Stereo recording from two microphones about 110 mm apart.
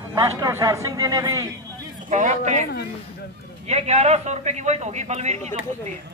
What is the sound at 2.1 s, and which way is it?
Speech, 90° right.